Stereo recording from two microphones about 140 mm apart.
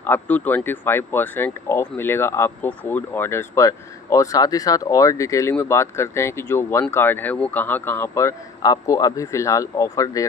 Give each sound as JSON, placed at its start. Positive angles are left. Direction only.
{"t": 0.0, "sound": "speech", "side_deg": 15}